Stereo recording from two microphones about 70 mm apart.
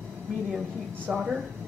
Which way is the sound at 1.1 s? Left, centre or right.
Right.